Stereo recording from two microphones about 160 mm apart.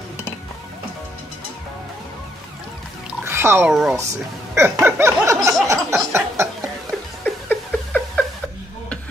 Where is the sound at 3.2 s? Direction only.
15° right (ahead or behind).